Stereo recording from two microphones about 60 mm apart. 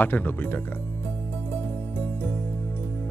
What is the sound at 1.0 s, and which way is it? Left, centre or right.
Music, left.